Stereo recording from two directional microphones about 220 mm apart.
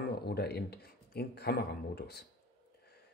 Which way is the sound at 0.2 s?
45° left (ahead or behind).